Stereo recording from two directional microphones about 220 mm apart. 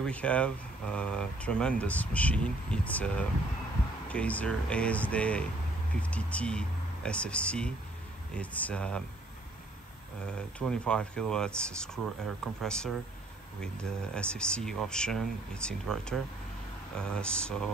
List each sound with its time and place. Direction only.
0.0 s speech: 5° left (ahead or behind)
10.2 s speech: 5° left (ahead or behind)